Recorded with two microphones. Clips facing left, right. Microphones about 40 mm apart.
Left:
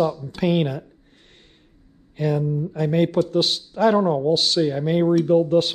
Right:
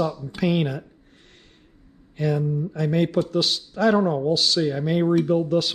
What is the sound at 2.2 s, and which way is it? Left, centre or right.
Speech, centre.